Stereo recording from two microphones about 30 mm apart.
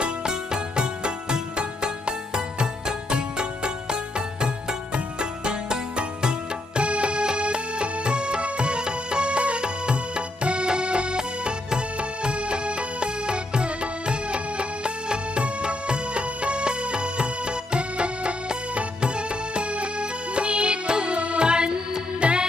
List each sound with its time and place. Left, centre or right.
0.0 s music: right
6.8 s music: right